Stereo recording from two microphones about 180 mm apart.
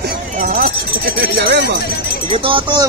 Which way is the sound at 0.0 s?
55° right (ahead or behind).